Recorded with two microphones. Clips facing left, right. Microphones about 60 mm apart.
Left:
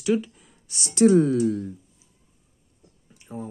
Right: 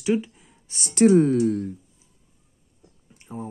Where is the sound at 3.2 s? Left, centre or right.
Right.